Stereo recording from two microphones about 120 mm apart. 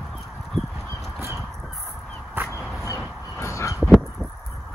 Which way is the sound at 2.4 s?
15° right (ahead or behind).